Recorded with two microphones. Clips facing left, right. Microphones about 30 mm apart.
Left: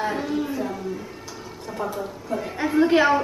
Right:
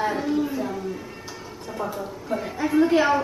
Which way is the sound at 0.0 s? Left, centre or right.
Centre.